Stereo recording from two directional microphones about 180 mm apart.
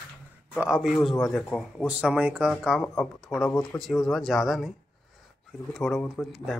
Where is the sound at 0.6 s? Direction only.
Centre (ahead or behind).